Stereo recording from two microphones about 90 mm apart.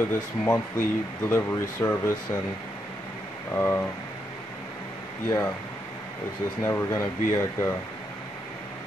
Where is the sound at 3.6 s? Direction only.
25° left (ahead or behind).